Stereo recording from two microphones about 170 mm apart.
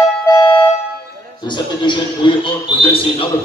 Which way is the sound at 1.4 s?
25° left (ahead or behind).